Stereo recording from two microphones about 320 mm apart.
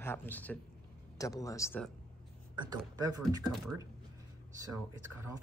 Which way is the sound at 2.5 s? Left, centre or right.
Centre.